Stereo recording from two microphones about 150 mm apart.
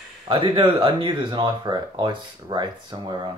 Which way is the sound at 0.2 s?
35° right (ahead or behind).